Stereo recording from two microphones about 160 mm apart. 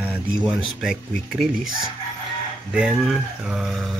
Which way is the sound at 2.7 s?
5° right (ahead or behind).